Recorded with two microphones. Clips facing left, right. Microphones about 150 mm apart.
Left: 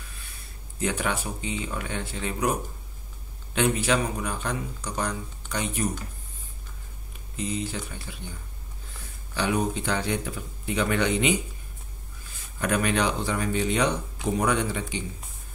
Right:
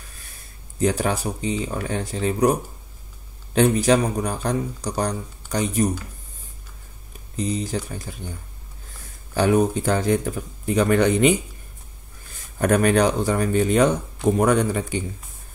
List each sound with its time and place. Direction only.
0.7 s speech: 35° right (ahead or behind)
3.5 s speech: 35° right (ahead or behind)
7.3 s speech: 40° right (ahead or behind)
9.3 s speech: 45° right (ahead or behind)
12.5 s speech: 45° right (ahead or behind)